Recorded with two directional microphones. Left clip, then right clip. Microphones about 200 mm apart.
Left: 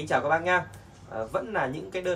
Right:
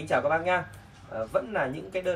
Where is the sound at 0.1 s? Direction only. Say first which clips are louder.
Even; 5° left (ahead or behind).